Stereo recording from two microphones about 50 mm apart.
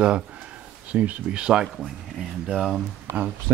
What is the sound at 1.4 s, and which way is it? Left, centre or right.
Speech, centre.